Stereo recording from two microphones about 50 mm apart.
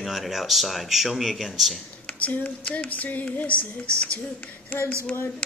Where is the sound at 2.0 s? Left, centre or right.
Left.